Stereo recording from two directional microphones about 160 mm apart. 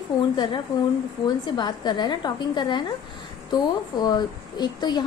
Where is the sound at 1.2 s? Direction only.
30° left (ahead or behind).